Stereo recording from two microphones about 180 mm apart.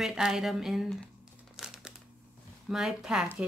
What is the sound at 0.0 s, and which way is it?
Speech, 5° right (ahead or behind).